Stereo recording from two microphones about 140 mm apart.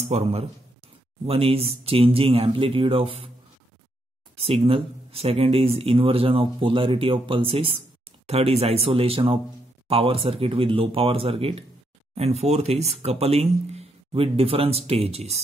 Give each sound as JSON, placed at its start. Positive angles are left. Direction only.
{"t": 0.1, "sound": "speech", "side_deg": -50}
{"t": 4.4, "sound": "speech", "side_deg": -45}